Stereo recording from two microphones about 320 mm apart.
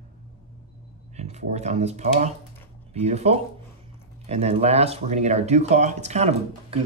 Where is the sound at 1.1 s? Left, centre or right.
Right.